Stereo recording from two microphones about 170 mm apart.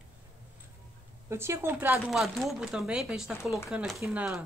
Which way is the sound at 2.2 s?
Centre (ahead or behind).